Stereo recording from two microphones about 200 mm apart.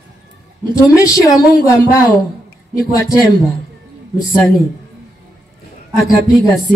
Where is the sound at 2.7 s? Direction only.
15° left (ahead or behind).